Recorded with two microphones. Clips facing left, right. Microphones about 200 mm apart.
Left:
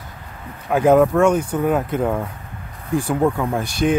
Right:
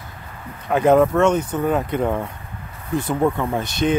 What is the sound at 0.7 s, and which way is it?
Speech, 5° left (ahead or behind).